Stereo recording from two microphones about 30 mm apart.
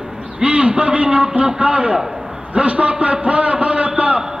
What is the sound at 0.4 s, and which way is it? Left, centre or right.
A man's voice, right.